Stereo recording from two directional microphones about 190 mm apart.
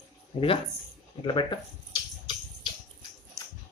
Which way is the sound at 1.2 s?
25° left (ahead or behind).